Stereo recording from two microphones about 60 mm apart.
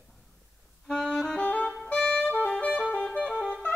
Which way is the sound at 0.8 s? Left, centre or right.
Centre.